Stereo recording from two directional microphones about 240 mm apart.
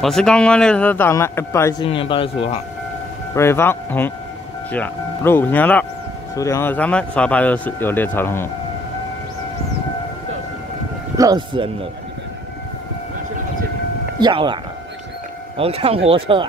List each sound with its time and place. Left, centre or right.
0.0 s a man's voice: centre; by 2.6 s left
3.3 s a man's voice: centre
11.1 s speech: centre
14.2 s speech: centre